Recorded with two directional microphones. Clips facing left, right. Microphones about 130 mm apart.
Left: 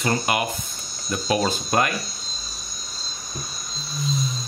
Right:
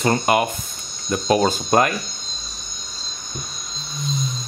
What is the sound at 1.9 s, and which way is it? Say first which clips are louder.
Cricket: right 2 dB; centre (ahead or behind).